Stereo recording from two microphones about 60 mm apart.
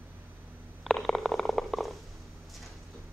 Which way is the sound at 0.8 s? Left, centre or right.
Centre.